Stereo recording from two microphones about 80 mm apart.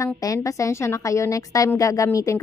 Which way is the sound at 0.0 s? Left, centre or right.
Left.